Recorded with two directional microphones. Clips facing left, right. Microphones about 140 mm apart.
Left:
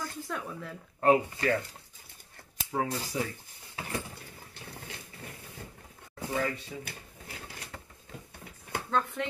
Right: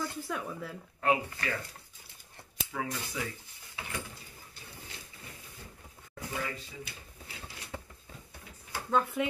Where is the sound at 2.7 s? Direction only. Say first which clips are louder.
Left 5 dB; 35° left (ahead or behind).